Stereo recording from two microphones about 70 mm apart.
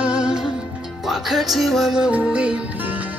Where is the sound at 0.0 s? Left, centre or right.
Centre.